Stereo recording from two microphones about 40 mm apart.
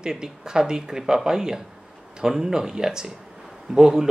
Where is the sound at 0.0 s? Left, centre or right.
Centre.